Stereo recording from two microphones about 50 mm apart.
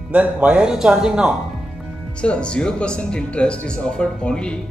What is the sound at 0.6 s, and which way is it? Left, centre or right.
Speech, centre.